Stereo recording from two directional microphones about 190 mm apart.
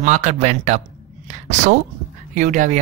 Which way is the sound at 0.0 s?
40° right (ahead or behind).